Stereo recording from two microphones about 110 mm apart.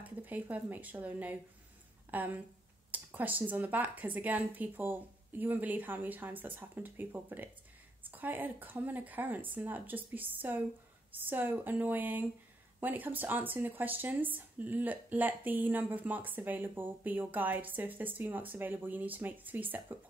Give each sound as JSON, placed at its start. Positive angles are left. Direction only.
{"t": 0.0, "sound": "speech", "side_deg": -15}